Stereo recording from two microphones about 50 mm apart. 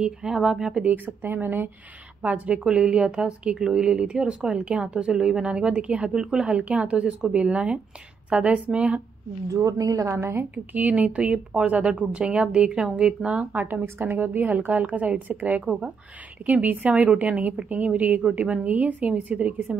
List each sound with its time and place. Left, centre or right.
0.0 s speech: centre
0.8 s speech: right
2.2 s speech: right
2.6 s speech: centre
9.5 s a woman's voice: right
10.5 s speech: right
13.5 s speech: right
13.8 s speech: right